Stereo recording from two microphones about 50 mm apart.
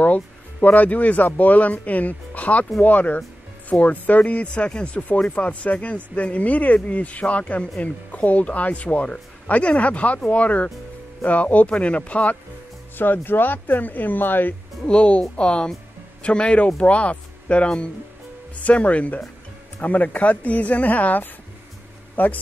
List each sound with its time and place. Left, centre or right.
0.0 s speech: left
12.9 s speech: left
14.9 s speech: left